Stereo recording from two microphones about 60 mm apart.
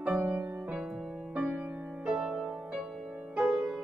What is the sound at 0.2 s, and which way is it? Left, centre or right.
Music, right.